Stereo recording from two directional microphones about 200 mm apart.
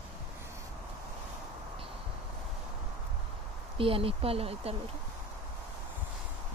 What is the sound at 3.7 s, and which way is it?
Speech, 25° right (ahead or behind).